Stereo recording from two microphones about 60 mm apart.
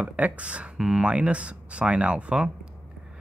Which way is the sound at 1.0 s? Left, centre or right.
Centre.